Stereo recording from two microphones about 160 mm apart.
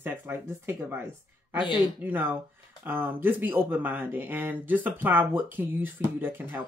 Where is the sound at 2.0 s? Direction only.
10° right (ahead or behind).